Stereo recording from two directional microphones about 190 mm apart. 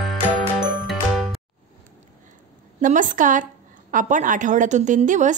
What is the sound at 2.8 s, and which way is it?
A woman's voice, 45° right (ahead or behind).